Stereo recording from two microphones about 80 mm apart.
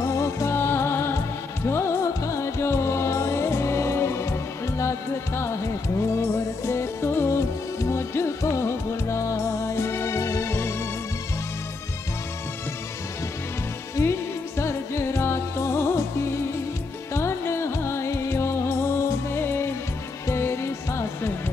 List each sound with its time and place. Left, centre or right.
0.0 s music: left
14.0 s music: left